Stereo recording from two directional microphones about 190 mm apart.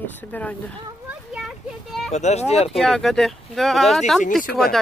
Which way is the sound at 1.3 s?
Centre (ahead or behind).